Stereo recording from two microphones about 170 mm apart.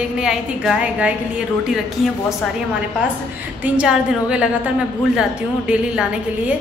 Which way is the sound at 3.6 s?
5° right (ahead or behind).